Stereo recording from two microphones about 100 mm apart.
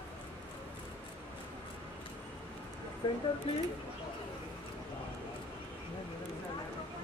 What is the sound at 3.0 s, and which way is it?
Speech, 60° left (ahead or behind).